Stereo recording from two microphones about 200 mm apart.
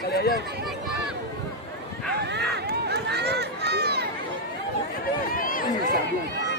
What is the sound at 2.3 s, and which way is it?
Run, 55° right (ahead or behind).